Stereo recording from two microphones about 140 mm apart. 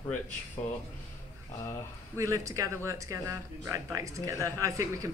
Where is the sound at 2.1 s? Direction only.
20° right (ahead or behind).